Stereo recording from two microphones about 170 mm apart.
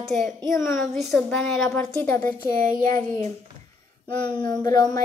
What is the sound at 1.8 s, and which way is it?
Speech, 10° left (ahead or behind).